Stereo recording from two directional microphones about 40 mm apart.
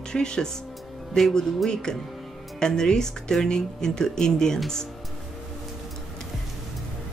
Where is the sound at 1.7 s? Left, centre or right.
Centre.